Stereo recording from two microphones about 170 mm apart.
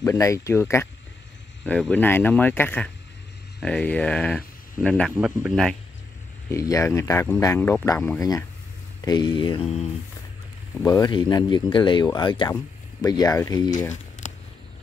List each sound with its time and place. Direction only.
0.0 s speech: 15° left (ahead or behind)
5.1 s a man's voice: 10° right (ahead or behind)
5.5 s speech: centre (ahead or behind)
6.5 s speech: 20° left (ahead or behind); by 9.8 s 35° left (ahead or behind)
10.8 s speech: 20° left (ahead or behind)
14.2 s a sound: 45° left (ahead or behind)